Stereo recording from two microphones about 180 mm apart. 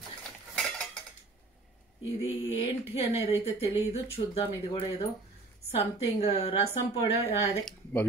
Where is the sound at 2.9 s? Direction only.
35° left (ahead or behind).